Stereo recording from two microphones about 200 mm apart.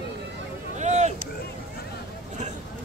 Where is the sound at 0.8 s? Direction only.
35° right (ahead or behind).